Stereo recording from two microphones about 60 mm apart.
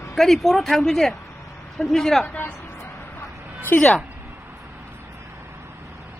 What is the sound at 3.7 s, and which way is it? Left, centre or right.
Speech, left.